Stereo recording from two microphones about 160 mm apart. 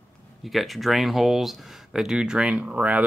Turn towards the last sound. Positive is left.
turn(degrees=-10)  # may be behind; listen again after turning